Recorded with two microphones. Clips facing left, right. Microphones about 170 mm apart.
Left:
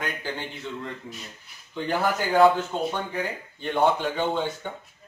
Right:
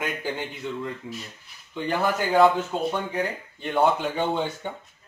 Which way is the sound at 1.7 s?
Centre (ahead or behind).